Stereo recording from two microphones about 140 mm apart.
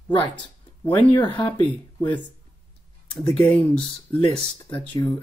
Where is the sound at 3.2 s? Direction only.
10° left (ahead or behind).